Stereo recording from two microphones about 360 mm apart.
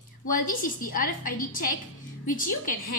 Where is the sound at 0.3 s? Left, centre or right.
Left.